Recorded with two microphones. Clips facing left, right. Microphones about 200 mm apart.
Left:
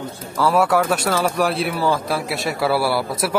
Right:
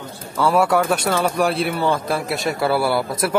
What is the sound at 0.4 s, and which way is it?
Speech, centre (ahead or behind).